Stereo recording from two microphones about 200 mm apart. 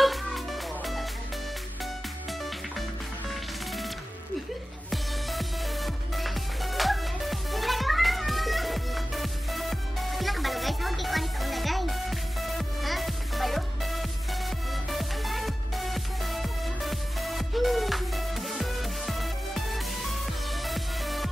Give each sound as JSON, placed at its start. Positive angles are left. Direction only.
{"t": 0.0, "sound": "music", "side_deg": 0}
{"t": 3.3, "sound": "music", "side_deg": 0}
{"t": 4.9, "sound": "music", "side_deg": 0}